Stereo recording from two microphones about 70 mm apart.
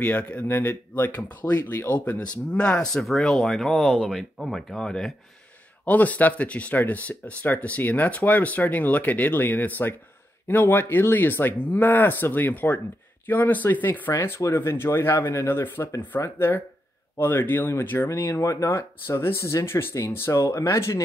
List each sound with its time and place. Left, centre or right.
0.0 s speech: left
5.9 s speech: left
14.1 s speech: left
18.3 s speech: left
18.7 s speech: left